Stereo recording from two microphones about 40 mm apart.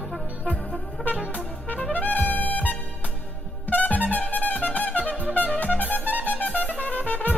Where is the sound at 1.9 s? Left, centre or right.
Left.